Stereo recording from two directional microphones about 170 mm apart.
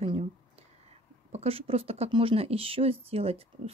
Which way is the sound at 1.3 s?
35° right (ahead or behind).